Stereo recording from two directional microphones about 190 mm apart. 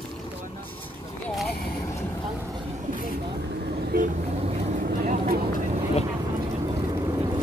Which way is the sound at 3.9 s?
50° right (ahead or behind).